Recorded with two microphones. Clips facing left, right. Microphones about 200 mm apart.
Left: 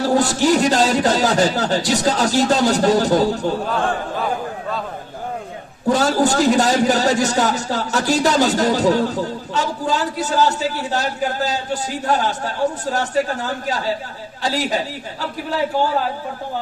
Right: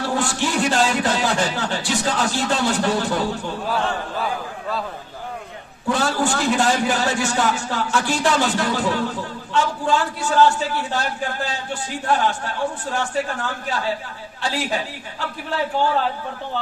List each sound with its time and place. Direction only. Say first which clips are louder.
0.0 s a man's voice: left 6 dB; 40° left (ahead or behind)
5.9 s a man's voice: left 5 dB; 40° left (ahead or behind)